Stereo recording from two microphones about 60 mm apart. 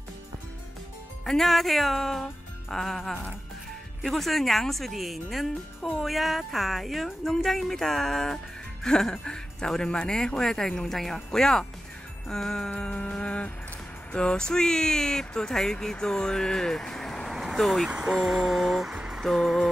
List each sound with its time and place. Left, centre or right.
1.2 s speech: centre
4.0 s speech: centre
12.7 s music: left
14.1 s speech: centre
17.8 s speech: centre
18.2 s music: centre
19.2 s speech: centre